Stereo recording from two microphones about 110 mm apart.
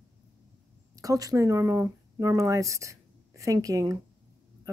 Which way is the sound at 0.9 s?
30° right (ahead or behind).